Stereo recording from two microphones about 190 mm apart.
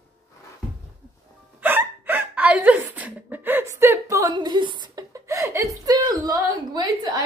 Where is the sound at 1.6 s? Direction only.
10° right (ahead or behind).